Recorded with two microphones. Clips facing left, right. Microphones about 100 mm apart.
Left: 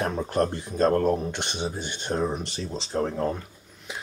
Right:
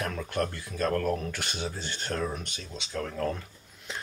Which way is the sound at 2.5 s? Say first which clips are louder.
Left 7 dB; 35° left (ahead or behind).